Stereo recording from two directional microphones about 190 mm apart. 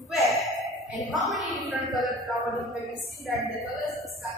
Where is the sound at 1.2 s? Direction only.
Centre (ahead or behind).